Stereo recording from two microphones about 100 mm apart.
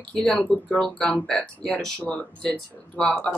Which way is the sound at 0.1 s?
10° left (ahead or behind).